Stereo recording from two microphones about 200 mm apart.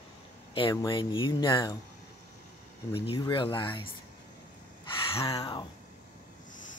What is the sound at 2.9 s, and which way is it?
Speech, 25° left (ahead or behind).